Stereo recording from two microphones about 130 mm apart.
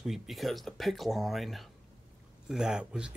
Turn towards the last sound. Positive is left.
turn(degrees=-5)  # may be behind; listen again after turning